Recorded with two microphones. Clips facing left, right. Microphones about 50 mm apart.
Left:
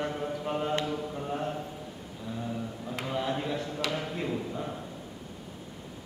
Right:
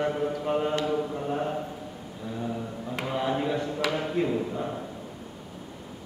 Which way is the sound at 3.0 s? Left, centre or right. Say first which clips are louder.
Right 4 dB; centre.